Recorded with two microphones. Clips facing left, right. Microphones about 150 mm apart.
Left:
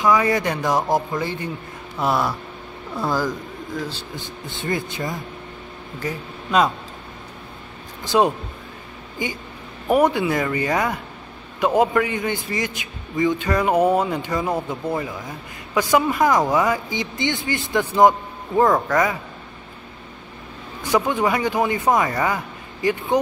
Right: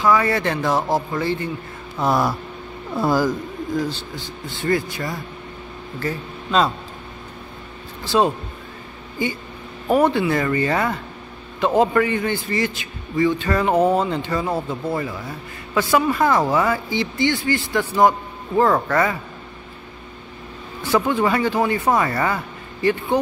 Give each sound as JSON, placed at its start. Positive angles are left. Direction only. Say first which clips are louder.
{"t": 0.0, "sound": "a man's voice", "louder": "even", "side_deg": 15}
{"t": 2.0, "sound": "speech", "louder": "right 2 dB", "side_deg": 0}
{"t": 4.1, "sound": "speech", "louder": "right 1 dB", "side_deg": 20}
{"t": 8.0, "sound": "a man's voice", "louder": "even", "side_deg": 15}
{"t": 20.8, "sound": "a man's voice", "louder": "right 1 dB", "side_deg": 15}